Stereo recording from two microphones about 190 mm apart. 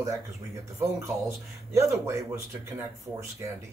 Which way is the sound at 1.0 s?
15° right (ahead or behind).